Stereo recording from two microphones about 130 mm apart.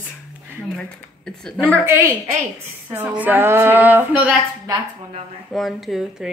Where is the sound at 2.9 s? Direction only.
15° right (ahead or behind).